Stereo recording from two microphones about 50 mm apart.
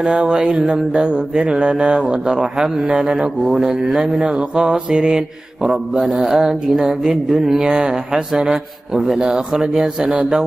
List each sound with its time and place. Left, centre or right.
0.0 s mantra: centre